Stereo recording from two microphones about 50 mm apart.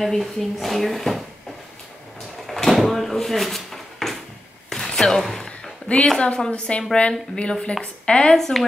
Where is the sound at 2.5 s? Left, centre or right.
Centre.